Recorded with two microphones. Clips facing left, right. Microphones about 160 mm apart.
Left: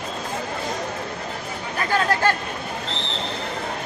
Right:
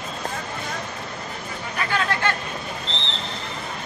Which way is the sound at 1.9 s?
40° left (ahead or behind).